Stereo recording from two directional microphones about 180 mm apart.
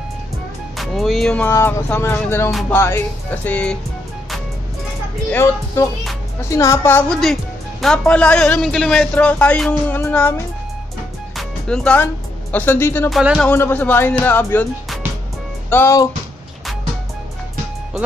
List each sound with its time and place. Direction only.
0.7 s a man's voice: centre (ahead or behind)
5.3 s a man's voice: 15° left (ahead or behind)
13.1 s speech: 5° right (ahead or behind)
13.4 s a man's voice: 10° left (ahead or behind)
15.7 s a man's voice: 15° left (ahead or behind)